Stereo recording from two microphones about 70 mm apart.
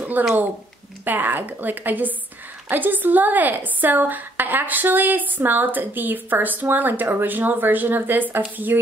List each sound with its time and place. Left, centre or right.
0.2 s a woman's voice: right